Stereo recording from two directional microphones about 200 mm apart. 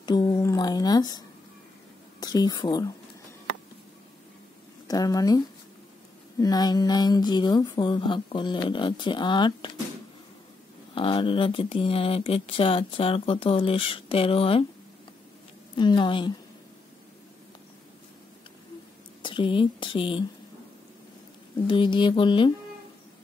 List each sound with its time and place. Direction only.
0.0 s a sound: 20° left (ahead or behind)
2.1 s a woman's voice: 20° left (ahead or behind)
4.8 s speech: 20° left (ahead or behind)
6.4 s speech: 20° left (ahead or behind)
11.0 s speech: 25° left (ahead or behind)
15.7 s speech: 25° left (ahead or behind)
19.2 s speech: 25° left (ahead or behind)
21.6 s speech: 25° left (ahead or behind)